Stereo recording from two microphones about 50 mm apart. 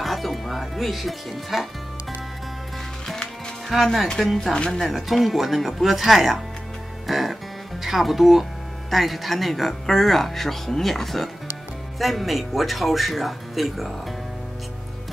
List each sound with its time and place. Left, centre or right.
0.0 s speech: centre
3.6 s speech: centre
4.6 s speech: centre
4.8 s speech: centre